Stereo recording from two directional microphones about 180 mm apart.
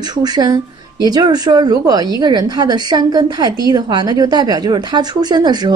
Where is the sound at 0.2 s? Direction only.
20° right (ahead or behind).